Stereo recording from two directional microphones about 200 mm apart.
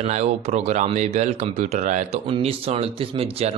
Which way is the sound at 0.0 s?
35° right (ahead or behind).